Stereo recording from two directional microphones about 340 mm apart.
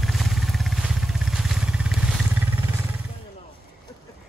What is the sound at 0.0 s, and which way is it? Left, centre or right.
Vehicle, centre.